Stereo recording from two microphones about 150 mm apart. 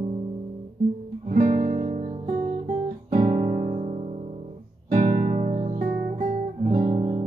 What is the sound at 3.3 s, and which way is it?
Music, 45° right (ahead or behind).